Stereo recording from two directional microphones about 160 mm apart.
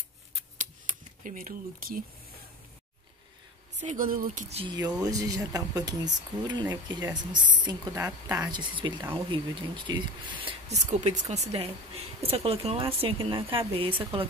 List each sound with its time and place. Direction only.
1.2 s speech: 55° right (ahead or behind)
3.8 s speech: 55° right (ahead or behind)
4.5 s speech: 40° right (ahead or behind)
5.0 s speech: 20° right (ahead or behind)
10.7 s a woman's voice: 45° right (ahead or behind)